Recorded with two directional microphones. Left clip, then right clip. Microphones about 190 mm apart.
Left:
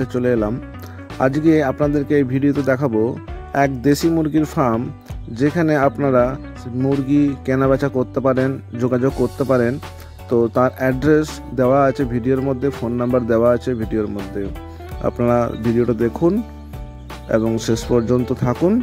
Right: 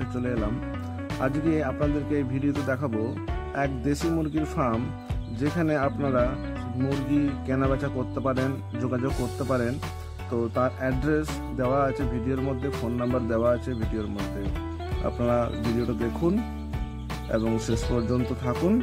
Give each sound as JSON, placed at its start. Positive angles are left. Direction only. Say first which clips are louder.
{"t": 0.1, "sound": "speech", "louder": "left 11 dB", "side_deg": 35}
{"t": 15.0, "sound": "speech", "louder": "left 8 dB", "side_deg": 30}